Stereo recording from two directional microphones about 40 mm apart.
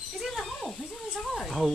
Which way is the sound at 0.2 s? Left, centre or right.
Centre.